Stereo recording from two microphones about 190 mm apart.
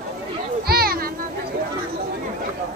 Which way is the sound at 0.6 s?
55° right (ahead or behind).